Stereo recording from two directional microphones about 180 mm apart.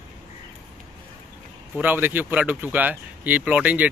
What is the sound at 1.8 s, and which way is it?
Speech, 10° right (ahead or behind).